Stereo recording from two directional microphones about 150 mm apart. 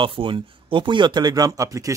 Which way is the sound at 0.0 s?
35° right (ahead or behind).